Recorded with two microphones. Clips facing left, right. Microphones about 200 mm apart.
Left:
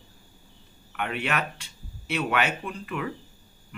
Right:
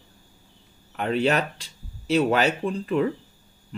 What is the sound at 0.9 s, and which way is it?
Speech, 35° right (ahead or behind).